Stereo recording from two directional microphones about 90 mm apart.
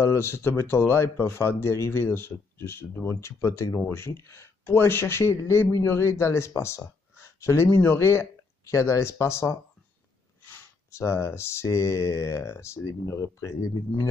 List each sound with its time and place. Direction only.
0.0 s speech: 30° left (ahead or behind)